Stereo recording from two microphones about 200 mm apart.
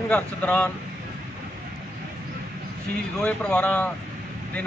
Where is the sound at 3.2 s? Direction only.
5° left (ahead or behind).